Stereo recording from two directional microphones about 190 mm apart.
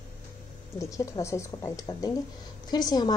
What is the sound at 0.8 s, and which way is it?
A woman's voice, 15° left (ahead or behind).